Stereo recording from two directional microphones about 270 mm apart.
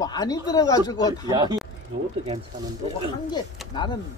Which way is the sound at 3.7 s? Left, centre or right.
Centre.